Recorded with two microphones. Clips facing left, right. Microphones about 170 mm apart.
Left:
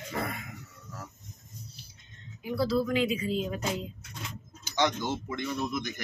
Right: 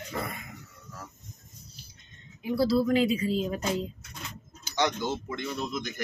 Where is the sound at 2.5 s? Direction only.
35° right (ahead or behind).